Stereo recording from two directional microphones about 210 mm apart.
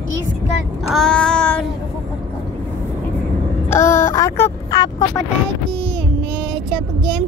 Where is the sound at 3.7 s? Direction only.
10° left (ahead or behind).